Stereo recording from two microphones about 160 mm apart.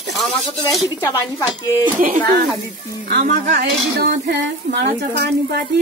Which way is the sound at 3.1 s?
90° right.